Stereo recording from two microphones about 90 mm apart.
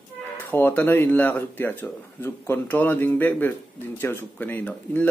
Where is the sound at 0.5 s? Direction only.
20° left (ahead or behind).